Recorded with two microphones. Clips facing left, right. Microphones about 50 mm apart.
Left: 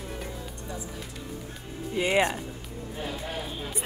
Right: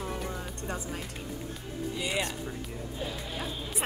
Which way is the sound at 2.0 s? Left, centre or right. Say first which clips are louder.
Left 10 dB; left.